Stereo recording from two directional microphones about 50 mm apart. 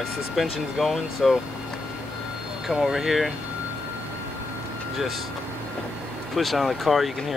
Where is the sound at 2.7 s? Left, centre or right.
Centre.